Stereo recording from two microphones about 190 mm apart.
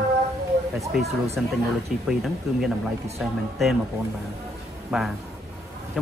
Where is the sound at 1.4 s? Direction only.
5° right (ahead or behind).